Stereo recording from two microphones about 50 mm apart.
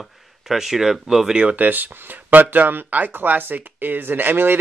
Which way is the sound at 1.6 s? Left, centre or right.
Right.